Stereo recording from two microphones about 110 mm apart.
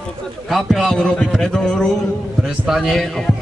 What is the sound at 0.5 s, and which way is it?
A man's voice, centre (ahead or behind).